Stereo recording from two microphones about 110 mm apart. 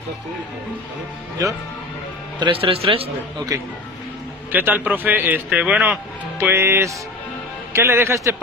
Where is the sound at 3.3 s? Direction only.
35° right (ahead or behind).